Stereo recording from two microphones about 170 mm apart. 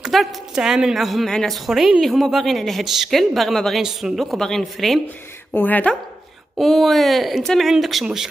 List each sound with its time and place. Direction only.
0.0 s a woman's voice: centre (ahead or behind)